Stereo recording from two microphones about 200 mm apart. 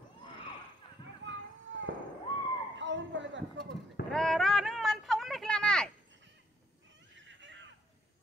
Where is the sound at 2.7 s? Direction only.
65° right (ahead or behind).